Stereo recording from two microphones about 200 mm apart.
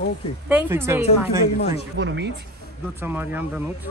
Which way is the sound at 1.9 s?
60° right (ahead or behind).